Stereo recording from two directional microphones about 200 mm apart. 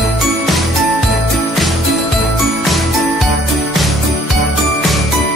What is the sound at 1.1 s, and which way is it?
Jingle bell, centre (ahead or behind).